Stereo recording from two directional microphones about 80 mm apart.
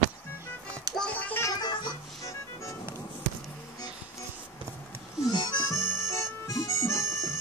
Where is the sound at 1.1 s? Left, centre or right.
Left.